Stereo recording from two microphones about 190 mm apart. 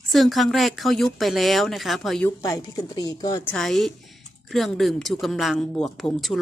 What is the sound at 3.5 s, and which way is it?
Speech, centre (ahead or behind).